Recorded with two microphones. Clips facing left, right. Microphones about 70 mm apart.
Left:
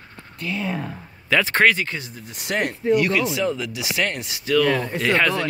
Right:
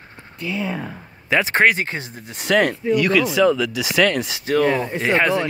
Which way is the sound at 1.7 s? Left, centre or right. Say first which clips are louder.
Right 2 dB; right.